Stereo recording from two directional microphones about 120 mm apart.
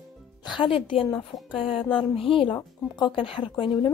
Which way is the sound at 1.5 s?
50° left (ahead or behind).